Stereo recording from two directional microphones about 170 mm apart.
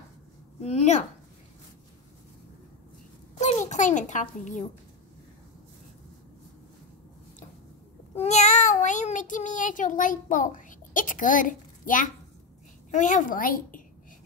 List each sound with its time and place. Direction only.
0.6 s a woman's voice: 40° left (ahead or behind)
3.3 s a child's voice: 45° left (ahead or behind)
8.2 s a woman's voice: 40° left (ahead or behind)